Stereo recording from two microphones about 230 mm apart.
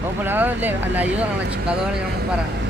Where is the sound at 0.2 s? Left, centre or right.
Centre.